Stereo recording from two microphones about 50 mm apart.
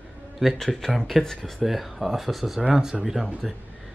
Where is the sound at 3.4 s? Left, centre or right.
Centre.